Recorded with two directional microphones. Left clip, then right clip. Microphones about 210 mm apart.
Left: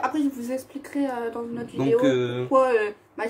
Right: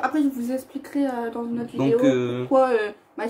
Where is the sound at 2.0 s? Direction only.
5° left (ahead or behind).